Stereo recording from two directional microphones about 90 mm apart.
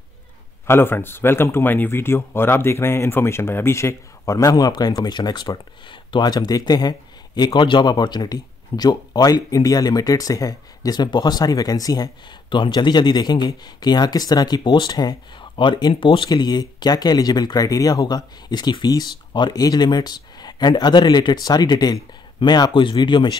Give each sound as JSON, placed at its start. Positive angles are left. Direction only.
{"t": 0.7, "sound": "speech", "side_deg": 25}
{"t": 12.4, "sound": "speech", "side_deg": 60}
{"t": 15.5, "sound": "speech", "side_deg": 65}